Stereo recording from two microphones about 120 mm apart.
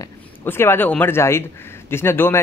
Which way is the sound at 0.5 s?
20° left (ahead or behind).